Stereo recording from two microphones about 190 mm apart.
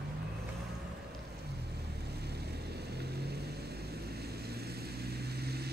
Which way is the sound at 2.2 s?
60° right (ahead or behind).